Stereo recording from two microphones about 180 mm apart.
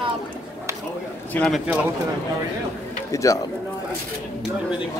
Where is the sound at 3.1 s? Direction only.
15° left (ahead or behind).